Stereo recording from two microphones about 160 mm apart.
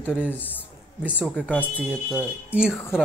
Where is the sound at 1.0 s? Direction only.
5° right (ahead or behind).